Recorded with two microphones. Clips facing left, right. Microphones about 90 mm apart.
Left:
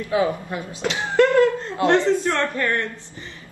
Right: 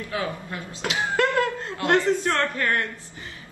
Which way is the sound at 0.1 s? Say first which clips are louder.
Left 9 dB; 20° left (ahead or behind).